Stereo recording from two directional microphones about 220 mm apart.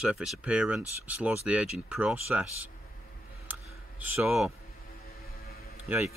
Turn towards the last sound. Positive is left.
turn(degrees=-5)  # may be behind; listen again after turning